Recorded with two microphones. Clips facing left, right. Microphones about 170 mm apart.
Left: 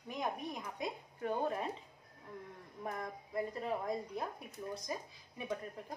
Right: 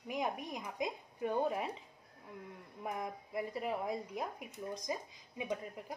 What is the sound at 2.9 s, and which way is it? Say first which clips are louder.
Speech: right 2 dB; 10° right (ahead or behind).